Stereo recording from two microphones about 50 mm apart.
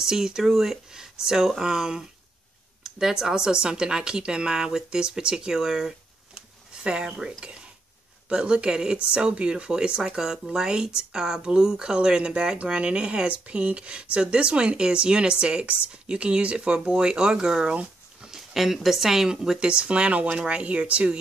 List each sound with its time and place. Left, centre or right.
0.0 s speech: centre
18.5 s speech: centre
19.7 s speech: right